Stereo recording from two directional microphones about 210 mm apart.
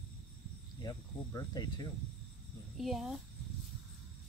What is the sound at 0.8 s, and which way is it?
Speech, 20° left (ahead or behind).